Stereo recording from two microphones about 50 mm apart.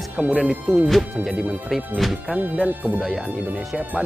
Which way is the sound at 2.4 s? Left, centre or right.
Right.